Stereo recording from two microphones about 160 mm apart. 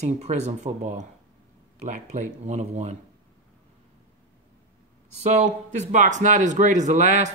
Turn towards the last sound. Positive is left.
turn(degrees=-50)  # may be behind; listen again after turning